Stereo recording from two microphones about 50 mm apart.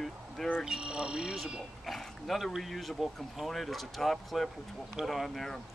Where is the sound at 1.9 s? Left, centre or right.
Centre.